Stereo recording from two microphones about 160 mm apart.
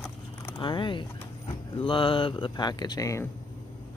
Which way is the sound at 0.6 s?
30° left (ahead or behind).